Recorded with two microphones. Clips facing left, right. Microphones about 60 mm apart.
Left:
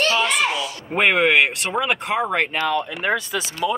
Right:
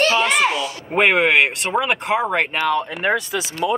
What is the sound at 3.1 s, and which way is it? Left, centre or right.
Speech, centre.